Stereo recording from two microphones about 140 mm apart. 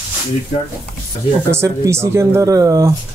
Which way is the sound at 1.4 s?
20° right (ahead or behind).